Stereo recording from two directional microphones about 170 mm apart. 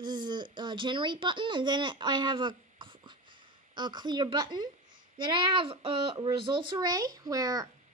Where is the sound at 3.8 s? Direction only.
25° right (ahead or behind).